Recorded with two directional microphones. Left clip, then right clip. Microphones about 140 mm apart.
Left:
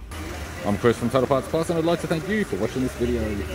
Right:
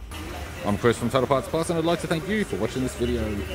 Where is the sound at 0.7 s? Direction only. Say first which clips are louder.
Left 1 dB; 5° right (ahead or behind).